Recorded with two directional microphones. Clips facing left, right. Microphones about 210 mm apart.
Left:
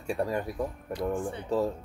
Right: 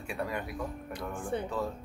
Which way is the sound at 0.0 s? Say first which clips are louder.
Left 6 dB; 35° left (ahead or behind).